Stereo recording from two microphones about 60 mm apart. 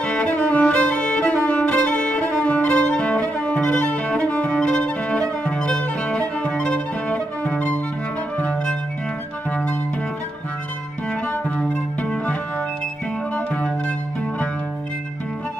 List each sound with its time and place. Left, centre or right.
0.0 s violin: centre
2.4 s music: left
11.5 s music: left
13.5 s music: left